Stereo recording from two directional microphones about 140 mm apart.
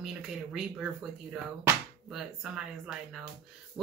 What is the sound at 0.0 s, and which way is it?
Speech, 5° right (ahead or behind).